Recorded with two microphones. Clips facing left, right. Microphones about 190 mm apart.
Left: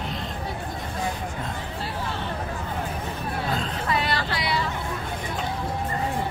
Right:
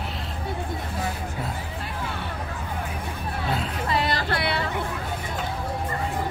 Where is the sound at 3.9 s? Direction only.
40° right (ahead or behind).